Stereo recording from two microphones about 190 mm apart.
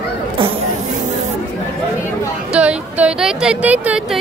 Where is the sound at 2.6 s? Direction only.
5° right (ahead or behind).